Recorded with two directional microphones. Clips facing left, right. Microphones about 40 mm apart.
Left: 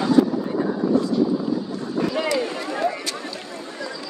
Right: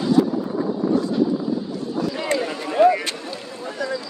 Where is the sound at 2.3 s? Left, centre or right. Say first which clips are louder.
Even; right.